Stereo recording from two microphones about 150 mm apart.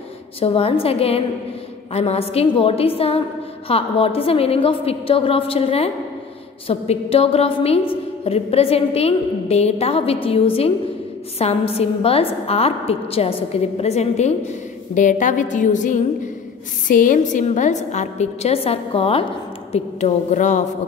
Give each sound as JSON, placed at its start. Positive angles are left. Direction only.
{"t": 0.4, "sound": "a woman's voice", "side_deg": 40}